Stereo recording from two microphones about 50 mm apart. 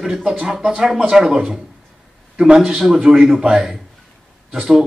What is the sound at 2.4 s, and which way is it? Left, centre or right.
A man's voice, centre.